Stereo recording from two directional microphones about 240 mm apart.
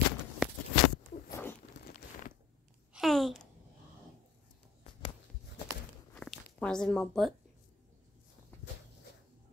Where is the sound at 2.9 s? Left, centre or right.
Centre.